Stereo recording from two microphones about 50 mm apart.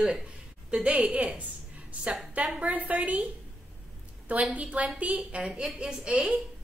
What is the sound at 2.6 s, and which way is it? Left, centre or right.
Speech, right.